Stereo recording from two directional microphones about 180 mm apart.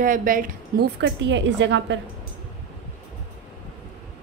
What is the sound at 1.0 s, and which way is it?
Speech, 80° right.